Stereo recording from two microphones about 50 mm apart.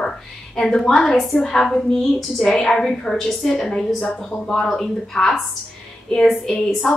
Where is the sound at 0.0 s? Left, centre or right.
Centre.